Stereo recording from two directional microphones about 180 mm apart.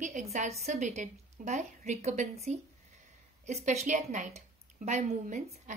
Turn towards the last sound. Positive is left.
turn(degrees=-45)  # may be behind; listen again after turning